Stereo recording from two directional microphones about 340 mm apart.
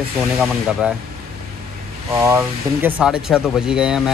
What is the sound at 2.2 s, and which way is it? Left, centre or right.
Speech, centre.